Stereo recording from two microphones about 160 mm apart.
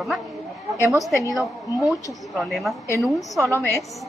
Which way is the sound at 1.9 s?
Centre (ahead or behind).